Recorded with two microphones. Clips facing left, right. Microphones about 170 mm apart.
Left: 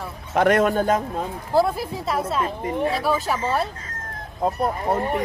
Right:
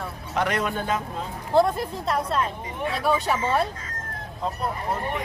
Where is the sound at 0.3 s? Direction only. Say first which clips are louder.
Left 8 dB; 50° left (ahead or behind).